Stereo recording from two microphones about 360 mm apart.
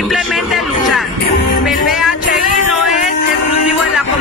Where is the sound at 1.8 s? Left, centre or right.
Centre.